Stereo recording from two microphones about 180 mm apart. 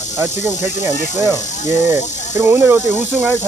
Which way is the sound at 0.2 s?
15° right (ahead or behind).